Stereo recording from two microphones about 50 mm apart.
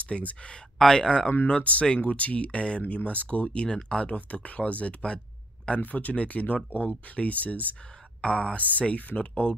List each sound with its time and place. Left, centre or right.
0.0 s speech: left
0.7 s speech: centre
1.5 s speech: left
8.2 s speech: centre